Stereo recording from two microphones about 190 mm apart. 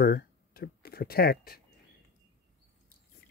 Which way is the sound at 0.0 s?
55° left (ahead or behind).